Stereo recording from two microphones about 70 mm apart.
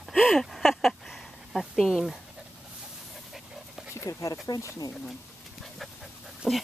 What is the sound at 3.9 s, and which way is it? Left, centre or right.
Speech, left.